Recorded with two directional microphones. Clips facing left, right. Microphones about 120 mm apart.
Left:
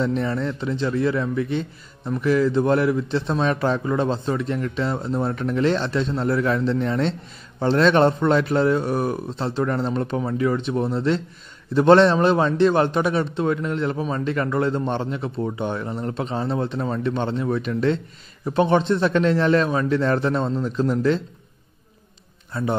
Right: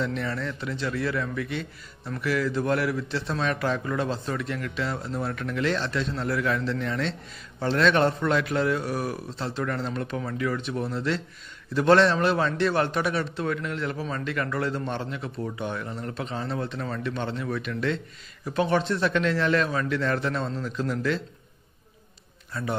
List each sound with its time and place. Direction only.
0.0 s a man's voice: 30° left (ahead or behind)
22.5 s a man's voice: 25° left (ahead or behind)